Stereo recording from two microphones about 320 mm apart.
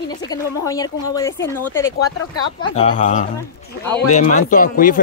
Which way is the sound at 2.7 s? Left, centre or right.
Centre.